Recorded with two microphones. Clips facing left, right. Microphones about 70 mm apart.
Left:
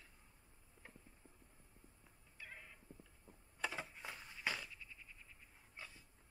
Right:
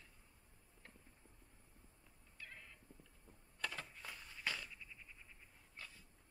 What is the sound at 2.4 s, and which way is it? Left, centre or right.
Cat, centre.